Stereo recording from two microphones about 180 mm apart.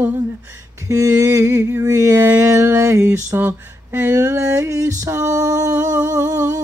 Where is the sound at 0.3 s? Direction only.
15° right (ahead or behind).